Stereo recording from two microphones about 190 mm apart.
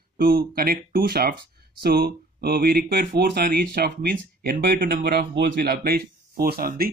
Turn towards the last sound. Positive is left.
turn(degrees=-50)  # may be behind; listen again after turning